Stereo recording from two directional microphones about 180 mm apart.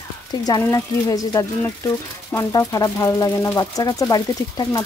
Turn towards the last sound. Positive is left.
turn(degrees=20)  # may be behind; listen again after turning